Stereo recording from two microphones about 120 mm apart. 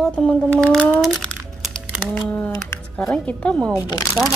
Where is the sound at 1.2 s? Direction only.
5° left (ahead or behind).